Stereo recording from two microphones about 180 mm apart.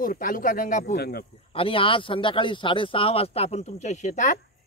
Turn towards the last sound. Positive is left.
turn(degrees=40)  # may be behind; listen again after turning